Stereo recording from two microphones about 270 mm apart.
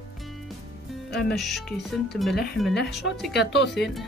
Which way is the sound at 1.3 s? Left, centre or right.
Centre.